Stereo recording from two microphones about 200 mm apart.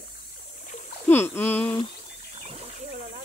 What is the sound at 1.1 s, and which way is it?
Speech, 10° left (ahead or behind).